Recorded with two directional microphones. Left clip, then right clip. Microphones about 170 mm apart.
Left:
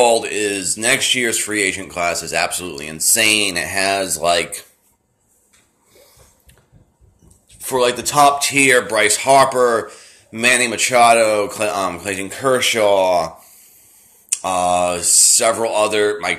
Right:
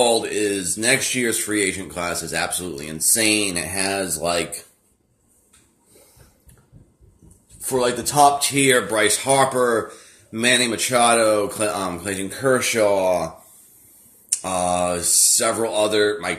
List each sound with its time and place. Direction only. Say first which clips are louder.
0.0 s speech: left 4 dB; 15° right (ahead or behind)
7.6 s speech: left 4 dB; 15° right (ahead or behind)
14.3 s speech: left 5 dB; 15° right (ahead or behind)